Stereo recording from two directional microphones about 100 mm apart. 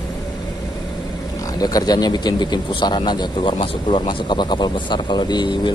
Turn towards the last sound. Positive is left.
turn(degrees=50)  # may be behind; listen again after turning